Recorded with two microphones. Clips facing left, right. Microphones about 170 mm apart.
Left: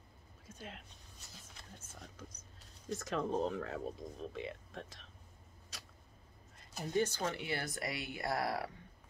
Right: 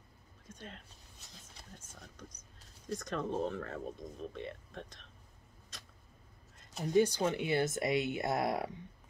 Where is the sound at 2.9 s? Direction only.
5° left (ahead or behind).